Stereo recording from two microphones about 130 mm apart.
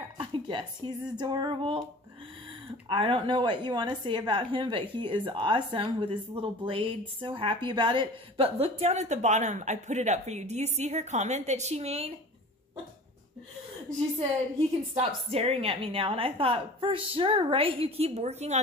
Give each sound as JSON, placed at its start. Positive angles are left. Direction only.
{"t": 0.2, "sound": "a sound", "side_deg": -35}
{"t": 2.9, "sound": "a woman's voice", "side_deg": -40}
{"t": 15.0, "sound": "a woman's voice", "side_deg": -50}